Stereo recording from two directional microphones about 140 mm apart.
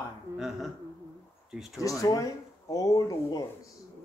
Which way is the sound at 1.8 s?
25° left (ahead or behind).